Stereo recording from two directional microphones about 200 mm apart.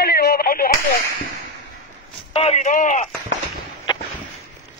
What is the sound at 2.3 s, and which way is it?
Speech, 35° left (ahead or behind).